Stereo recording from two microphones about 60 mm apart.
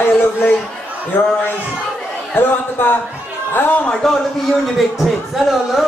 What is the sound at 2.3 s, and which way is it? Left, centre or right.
A man's voice, left.